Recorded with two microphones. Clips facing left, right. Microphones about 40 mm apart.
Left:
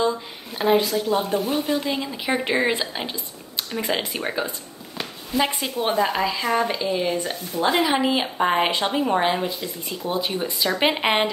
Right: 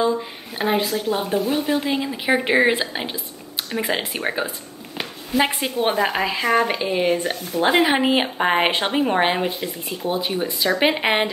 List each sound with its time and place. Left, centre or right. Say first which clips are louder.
0.6 s a woman's voice: left 2 dB; centre; by 7.3 s right
7.5 s a woman's voice: right 3 dB; right; by 11.2 s centre